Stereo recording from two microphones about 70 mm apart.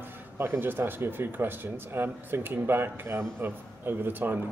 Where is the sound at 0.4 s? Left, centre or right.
Right.